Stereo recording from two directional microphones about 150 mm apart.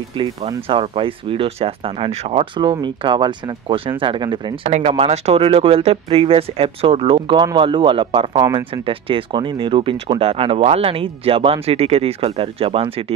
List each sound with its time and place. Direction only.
0.2 s speech: 35° right (ahead or behind)
4.6 s speech: 45° right (ahead or behind)